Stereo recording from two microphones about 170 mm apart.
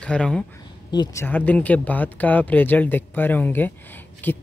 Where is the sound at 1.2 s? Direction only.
10° left (ahead or behind).